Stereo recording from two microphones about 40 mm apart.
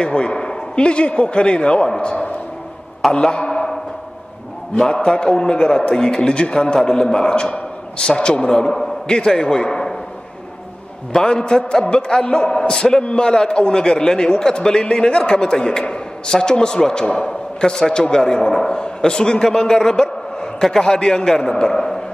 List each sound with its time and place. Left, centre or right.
0.0 s a man's voice: left
4.7 s a man's voice: centre
11.1 s a man's voice: left